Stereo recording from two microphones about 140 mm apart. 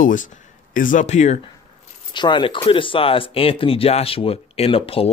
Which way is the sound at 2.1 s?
35° left (ahead or behind).